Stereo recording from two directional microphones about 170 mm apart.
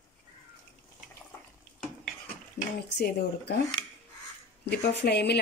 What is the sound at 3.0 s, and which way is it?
Speech, 75° left (ahead or behind).